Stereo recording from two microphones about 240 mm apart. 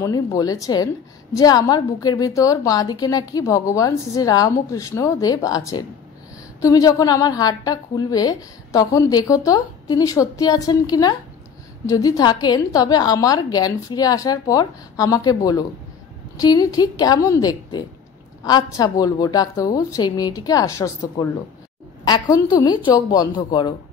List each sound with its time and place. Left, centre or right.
0.0 s a woman's voice: centre